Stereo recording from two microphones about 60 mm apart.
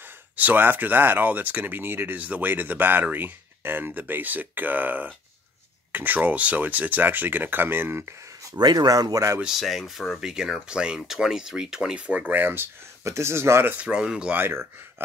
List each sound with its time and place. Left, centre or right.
0.4 s speech: right
8.5 s speech: right
9.4 s speech: centre; by 12.6 s right
13.0 s speech: right
13.7 s speech: centre
14.3 s speech: right